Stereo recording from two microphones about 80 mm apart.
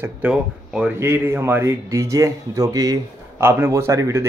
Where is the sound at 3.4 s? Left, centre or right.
Right.